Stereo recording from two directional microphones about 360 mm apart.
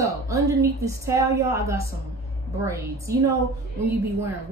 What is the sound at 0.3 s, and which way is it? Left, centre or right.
A woman's voice, centre.